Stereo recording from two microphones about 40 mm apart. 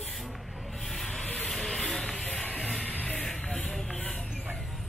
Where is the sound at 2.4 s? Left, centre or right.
Left.